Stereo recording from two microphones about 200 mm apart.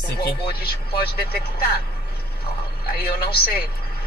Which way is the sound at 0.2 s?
50° left (ahead or behind).